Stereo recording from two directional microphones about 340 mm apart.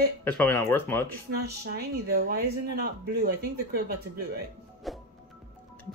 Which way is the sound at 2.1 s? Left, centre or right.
Right.